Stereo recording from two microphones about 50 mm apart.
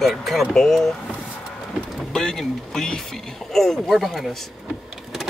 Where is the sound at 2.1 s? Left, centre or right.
Centre.